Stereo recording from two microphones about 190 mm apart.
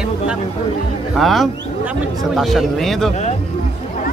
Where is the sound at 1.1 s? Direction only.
Centre (ahead or behind).